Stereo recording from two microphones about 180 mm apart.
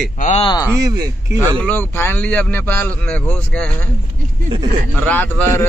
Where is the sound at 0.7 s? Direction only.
20° right (ahead or behind).